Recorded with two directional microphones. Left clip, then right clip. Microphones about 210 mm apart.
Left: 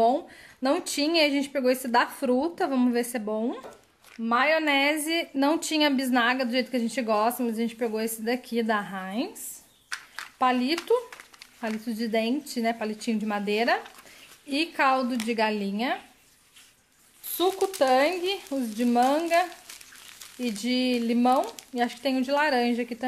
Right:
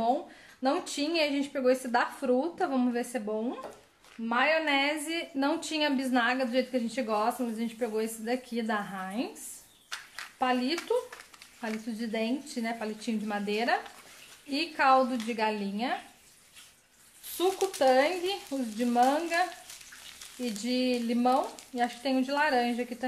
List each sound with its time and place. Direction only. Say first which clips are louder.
0.0 s speech: left 6 dB; 45° left (ahead or behind)
10.4 s speech: left 5 dB; 45° left (ahead or behind)
17.7 s speech: left 2 dB; 45° left (ahead or behind)
20.8 s speech: left 3 dB; 45° left (ahead or behind)